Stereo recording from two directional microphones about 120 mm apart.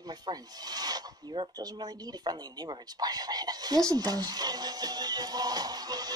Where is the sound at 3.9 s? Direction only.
35° right (ahead or behind).